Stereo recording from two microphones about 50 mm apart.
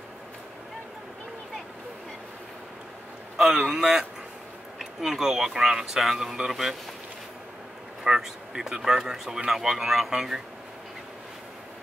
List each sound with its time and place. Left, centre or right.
3.6 s speech: centre
8.0 s speech: centre